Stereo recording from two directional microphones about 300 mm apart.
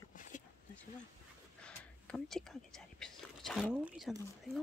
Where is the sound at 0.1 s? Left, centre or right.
Left.